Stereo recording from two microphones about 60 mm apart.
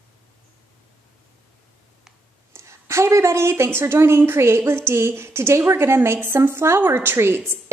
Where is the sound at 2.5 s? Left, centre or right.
Right.